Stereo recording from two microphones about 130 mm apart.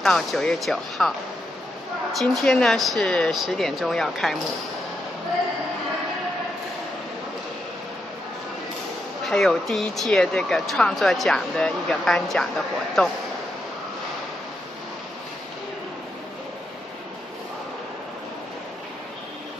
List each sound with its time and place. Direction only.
0.0 s speech: centre (ahead or behind)
2.1 s speech: 5° left (ahead or behind)
9.2 s speech: 5° left (ahead or behind)